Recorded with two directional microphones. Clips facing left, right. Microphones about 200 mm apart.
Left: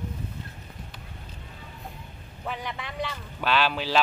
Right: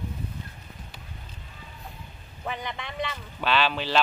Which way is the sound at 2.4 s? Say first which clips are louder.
Even; 5° left (ahead or behind).